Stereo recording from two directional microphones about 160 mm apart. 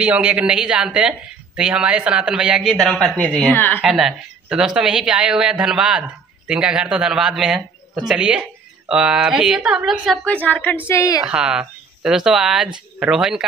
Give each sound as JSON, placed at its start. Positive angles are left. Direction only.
{"t": 0.0, "sound": "speech", "side_deg": -10}
{"t": 3.8, "sound": "speech", "side_deg": -5}
{"t": 10.2, "sound": "a woman's voice", "side_deg": 10}
{"t": 11.2, "sound": "speech", "side_deg": -5}